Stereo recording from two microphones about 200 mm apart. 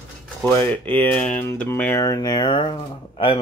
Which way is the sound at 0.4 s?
10° left (ahead or behind).